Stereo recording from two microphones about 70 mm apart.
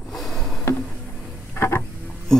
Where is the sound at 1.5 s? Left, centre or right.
Left.